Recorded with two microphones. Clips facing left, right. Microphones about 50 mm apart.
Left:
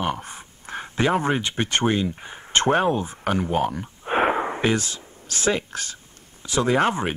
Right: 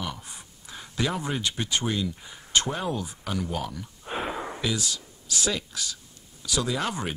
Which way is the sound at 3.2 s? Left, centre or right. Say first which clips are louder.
Left 10 dB; left.